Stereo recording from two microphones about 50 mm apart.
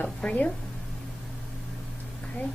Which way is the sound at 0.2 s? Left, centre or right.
Left.